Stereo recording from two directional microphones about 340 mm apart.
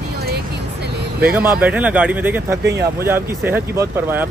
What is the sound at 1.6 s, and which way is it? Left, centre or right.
Speech, centre.